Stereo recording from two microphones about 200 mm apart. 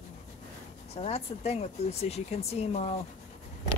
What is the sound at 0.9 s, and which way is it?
Speech, 30° left (ahead or behind).